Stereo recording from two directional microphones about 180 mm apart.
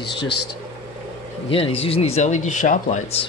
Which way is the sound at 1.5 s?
30° left (ahead or behind).